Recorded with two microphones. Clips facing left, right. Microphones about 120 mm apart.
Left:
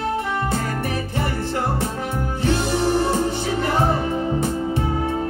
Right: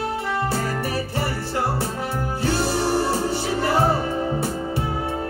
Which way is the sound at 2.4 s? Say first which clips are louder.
Left 2 dB; 35° right (ahead or behind).